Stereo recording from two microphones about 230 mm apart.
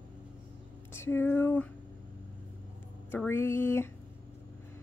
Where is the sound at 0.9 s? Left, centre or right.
Centre.